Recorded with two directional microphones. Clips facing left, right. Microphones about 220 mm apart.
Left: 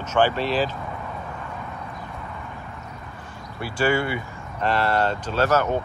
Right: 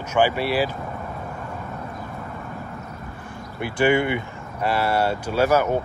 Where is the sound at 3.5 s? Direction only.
20° right (ahead or behind).